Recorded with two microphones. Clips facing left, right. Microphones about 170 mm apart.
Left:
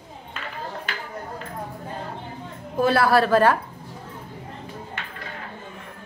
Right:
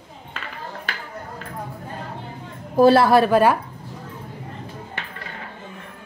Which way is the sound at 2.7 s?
30° right (ahead or behind).